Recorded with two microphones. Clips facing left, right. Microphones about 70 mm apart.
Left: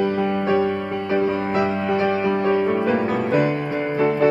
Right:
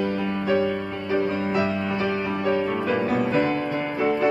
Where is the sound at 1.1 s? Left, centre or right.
Left.